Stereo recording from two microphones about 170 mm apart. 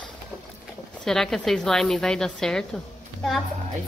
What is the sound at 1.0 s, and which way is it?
A woman's voice, centre (ahead or behind).